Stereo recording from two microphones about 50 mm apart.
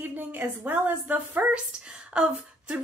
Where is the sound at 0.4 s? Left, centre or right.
Right.